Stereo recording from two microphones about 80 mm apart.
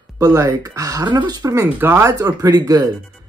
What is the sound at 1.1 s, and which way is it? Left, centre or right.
Speech, right.